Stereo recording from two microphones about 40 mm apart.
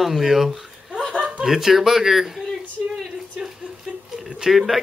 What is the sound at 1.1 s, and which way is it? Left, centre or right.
Chuckle, right.